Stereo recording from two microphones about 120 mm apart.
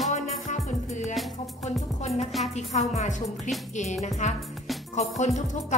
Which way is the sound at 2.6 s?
75° left (ahead or behind).